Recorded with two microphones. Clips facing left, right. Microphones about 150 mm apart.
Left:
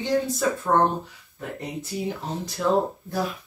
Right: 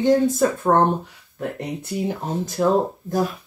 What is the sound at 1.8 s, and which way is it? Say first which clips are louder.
Speech: right 4 dB; 50° right (ahead or behind).